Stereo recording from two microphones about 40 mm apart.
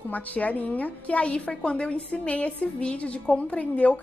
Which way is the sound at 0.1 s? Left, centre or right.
Left.